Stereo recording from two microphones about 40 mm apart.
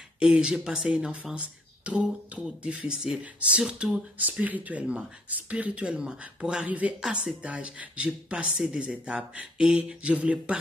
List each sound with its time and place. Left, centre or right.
0.2 s speech: right
1.1 s speech: right
4.2 s speech: right
6.6 s speech: right